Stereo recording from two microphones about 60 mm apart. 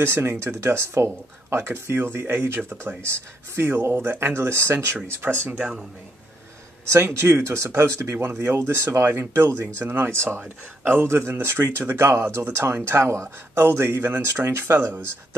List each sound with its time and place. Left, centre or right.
0.0 s speech: right
6.9 s speech: right